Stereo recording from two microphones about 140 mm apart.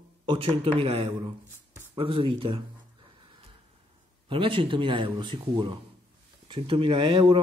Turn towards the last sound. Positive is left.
turn(degrees=-35)  # may be behind; listen again after turning